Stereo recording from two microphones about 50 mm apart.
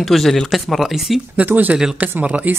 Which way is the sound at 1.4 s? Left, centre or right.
Right.